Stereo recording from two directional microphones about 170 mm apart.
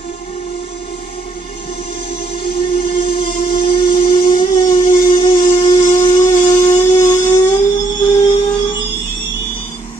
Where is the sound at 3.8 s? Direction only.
45° left (ahead or behind).